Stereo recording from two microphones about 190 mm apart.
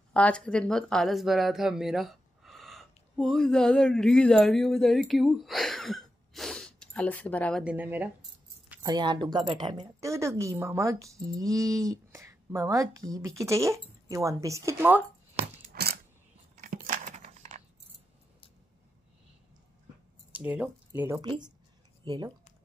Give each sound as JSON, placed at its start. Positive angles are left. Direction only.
{"t": 0.1, "sound": "speech", "side_deg": 5}
{"t": 7.6, "sound": "a woman's voice", "side_deg": -10}
{"t": 8.2, "sound": "keys jangling", "side_deg": -10}
{"t": 8.8, "sound": "a woman's voice", "side_deg": -25}
{"t": 15.7, "sound": "a sound", "side_deg": -55}
{"t": 16.6, "sound": "a sound", "side_deg": -45}
{"t": 20.3, "sound": "speech", "side_deg": -5}
{"t": 21.2, "sound": "speech", "side_deg": -20}